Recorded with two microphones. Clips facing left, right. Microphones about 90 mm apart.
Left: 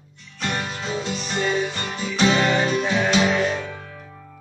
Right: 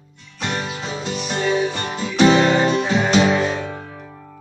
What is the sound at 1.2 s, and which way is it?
Music, 10° right (ahead or behind).